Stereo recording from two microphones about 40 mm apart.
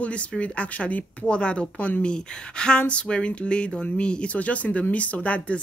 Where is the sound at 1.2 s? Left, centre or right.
Left.